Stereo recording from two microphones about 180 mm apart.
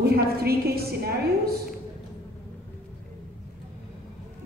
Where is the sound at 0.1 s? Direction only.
60° right (ahead or behind).